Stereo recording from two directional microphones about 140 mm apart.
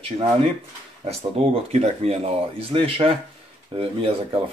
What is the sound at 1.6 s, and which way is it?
A man's voice, 50° right (ahead or behind).